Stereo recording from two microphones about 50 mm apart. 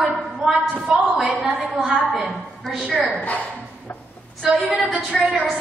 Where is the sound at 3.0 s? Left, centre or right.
Left.